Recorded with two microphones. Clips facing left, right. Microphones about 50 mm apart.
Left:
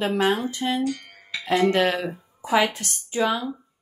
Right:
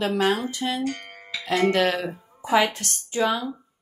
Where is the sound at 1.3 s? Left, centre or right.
Centre.